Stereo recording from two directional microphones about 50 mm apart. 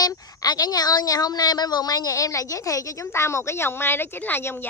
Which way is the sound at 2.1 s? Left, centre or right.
Left.